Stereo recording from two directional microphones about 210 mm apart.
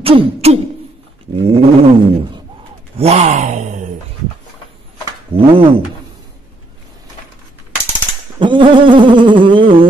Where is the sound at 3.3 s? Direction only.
40° right (ahead or behind).